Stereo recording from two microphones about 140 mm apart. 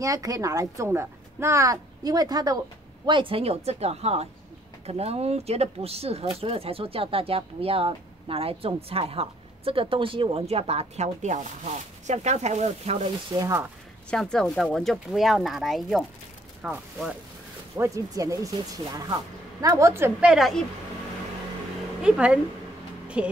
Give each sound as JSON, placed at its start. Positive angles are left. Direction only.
{"t": 0.0, "sound": "a woman's voice", "side_deg": -25}
{"t": 3.1, "sound": "speech", "side_deg": -40}
{"t": 13.3, "sound": "speech", "side_deg": -30}
{"t": 14.1, "sound": "speech", "side_deg": 5}
{"t": 17.7, "sound": "a woman's voice", "side_deg": -25}
{"t": 20.2, "sound": "speech", "side_deg": 0}
{"t": 22.0, "sound": "speech", "side_deg": -5}
{"t": 23.0, "sound": "music", "side_deg": -10}